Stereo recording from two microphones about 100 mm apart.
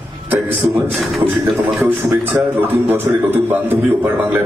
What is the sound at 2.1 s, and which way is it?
A man's voice, 20° right (ahead or behind).